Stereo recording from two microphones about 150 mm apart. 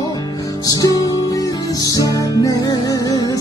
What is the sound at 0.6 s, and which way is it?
Music, 25° left (ahead or behind).